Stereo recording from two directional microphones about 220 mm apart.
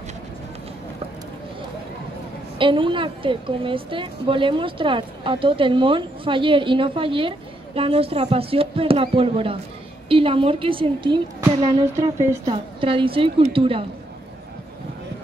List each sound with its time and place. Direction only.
2.6 s a woman's voice: 20° right (ahead or behind)
12.8 s a woman's voice: 25° right (ahead or behind)